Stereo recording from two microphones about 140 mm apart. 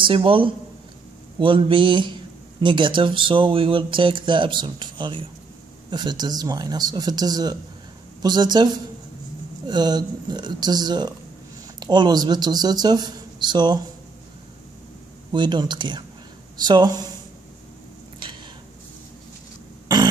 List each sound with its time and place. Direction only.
0.0 s a man's voice: 40° right (ahead or behind)
15.3 s a man's voice: 35° right (ahead or behind)